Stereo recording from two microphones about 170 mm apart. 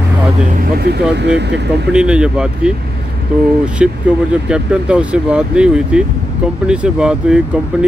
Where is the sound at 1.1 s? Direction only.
90° right.